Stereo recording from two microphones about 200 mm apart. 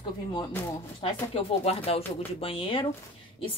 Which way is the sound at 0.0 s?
25° left (ahead or behind).